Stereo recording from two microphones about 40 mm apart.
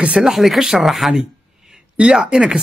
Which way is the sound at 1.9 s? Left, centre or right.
Right.